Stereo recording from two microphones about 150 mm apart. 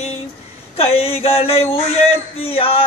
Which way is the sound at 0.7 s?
40° left (ahead or behind).